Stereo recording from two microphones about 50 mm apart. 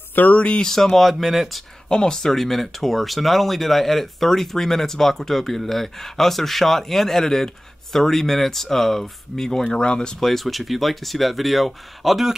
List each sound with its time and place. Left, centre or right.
0.1 s speech: left
0.4 s speech: left
0.7 s speech: centre
1.9 s speech: centre
10.2 s speech: centre